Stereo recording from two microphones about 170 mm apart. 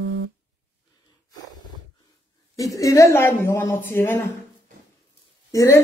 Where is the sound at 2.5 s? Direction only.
20° left (ahead or behind).